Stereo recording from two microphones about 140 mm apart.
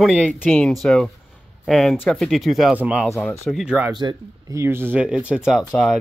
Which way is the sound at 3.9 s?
30° right (ahead or behind).